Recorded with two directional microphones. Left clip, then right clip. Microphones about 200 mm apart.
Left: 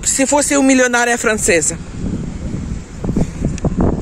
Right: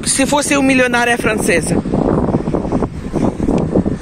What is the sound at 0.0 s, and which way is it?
Speech, 25° left (ahead or behind).